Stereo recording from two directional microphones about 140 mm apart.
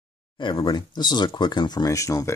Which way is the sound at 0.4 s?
30° left (ahead or behind).